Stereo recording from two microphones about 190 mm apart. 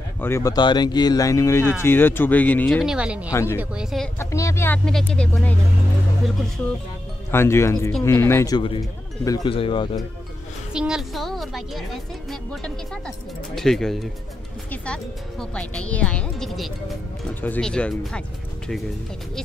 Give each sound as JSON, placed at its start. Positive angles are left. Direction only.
{"t": 0.2, "sound": "speech", "side_deg": 15}
{"t": 2.8, "sound": "speech", "side_deg": -5}
{"t": 3.3, "sound": "speech", "side_deg": 15}
{"t": 3.5, "sound": "speech", "side_deg": -5}
{"t": 4.2, "sound": "speech", "side_deg": 15}
{"t": 4.8, "sound": "speech", "side_deg": 5}
{"t": 7.2, "sound": "speech", "side_deg": 15}
{"t": 10.7, "sound": "speech", "side_deg": -5}